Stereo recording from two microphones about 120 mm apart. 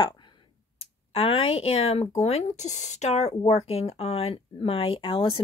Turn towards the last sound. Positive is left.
turn(degrees=45)  # may be behind; listen again after turning